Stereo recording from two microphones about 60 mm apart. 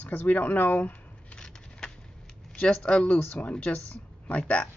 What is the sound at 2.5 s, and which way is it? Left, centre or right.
A woman's voice, centre.